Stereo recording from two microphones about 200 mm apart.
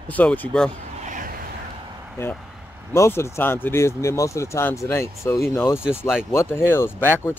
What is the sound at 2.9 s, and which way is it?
Speech, 15° left (ahead or behind).